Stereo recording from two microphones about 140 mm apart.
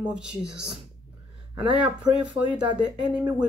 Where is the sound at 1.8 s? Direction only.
5° right (ahead or behind).